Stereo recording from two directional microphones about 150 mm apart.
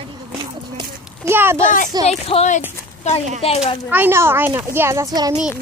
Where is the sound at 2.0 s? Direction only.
45° left (ahead or behind).